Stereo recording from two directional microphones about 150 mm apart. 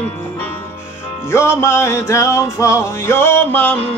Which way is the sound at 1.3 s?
15° left (ahead or behind).